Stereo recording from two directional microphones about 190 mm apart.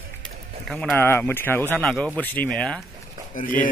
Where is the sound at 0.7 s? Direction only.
Centre (ahead or behind).